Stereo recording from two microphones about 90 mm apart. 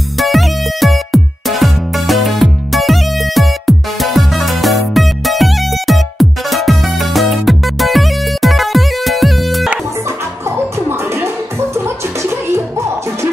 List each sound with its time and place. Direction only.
0.2 s music: centre (ahead or behind)
10.5 s music: 30° right (ahead or behind)
11.7 s a sound: 30° right (ahead or behind)